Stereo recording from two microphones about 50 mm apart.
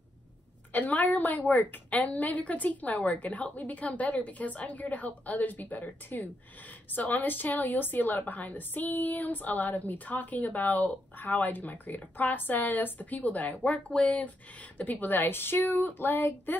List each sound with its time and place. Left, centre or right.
0.7 s a woman's voice: left